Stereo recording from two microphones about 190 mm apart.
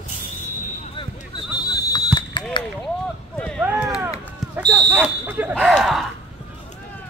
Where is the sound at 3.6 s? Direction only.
5° right (ahead or behind).